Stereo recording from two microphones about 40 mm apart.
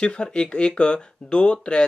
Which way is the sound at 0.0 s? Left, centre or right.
Left.